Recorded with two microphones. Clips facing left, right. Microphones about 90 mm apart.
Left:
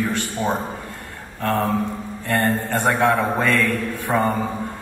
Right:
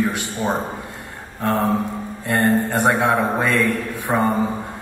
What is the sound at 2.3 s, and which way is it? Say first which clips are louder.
A man's voice: right 2 dB; 15° right (ahead or behind).